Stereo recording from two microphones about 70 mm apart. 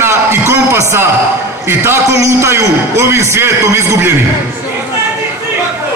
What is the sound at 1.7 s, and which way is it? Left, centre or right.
A man's voice, right.